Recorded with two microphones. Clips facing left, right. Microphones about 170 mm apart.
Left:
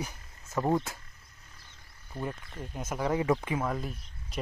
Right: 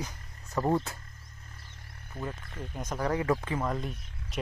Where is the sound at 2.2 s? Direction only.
5° left (ahead or behind).